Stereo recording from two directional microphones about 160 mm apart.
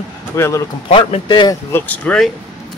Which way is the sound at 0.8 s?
35° left (ahead or behind).